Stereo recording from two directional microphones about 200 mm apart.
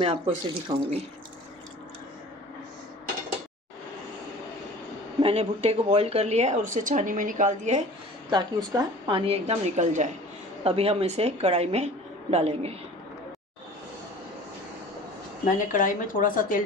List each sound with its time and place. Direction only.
0.0 s a woman's voice: 30° right (ahead or behind)
5.2 s a woman's voice: 30° right (ahead or behind)
8.3 s a woman's voice: 20° right (ahead or behind)
15.4 s speech: 40° left (ahead or behind)